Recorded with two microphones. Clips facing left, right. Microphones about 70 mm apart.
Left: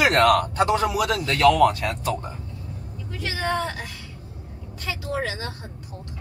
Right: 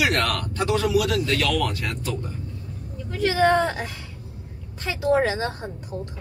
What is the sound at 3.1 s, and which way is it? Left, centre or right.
A woman's voice, right.